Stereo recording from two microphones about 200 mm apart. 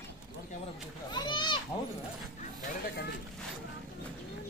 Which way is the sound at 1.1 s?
20° left (ahead or behind).